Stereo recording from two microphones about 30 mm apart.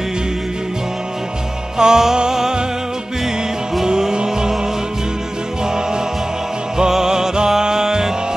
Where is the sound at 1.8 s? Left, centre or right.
Right.